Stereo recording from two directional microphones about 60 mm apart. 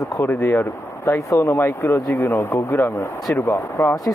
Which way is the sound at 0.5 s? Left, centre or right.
Left.